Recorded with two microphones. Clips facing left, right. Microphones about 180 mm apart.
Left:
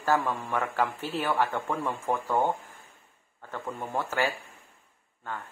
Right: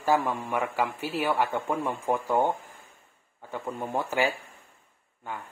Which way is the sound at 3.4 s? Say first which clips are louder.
Right 2 dB; 15° right (ahead or behind).